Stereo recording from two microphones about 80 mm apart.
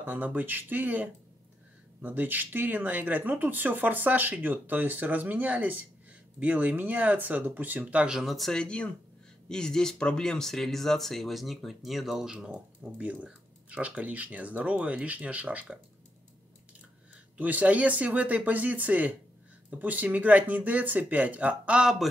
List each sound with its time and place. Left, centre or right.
0.0 s speech: right
17.4 s speech: centre